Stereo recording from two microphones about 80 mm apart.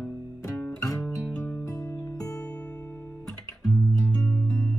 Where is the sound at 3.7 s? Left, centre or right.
Centre.